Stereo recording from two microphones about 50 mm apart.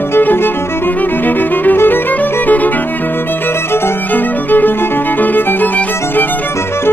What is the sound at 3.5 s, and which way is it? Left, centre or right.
Violin, left.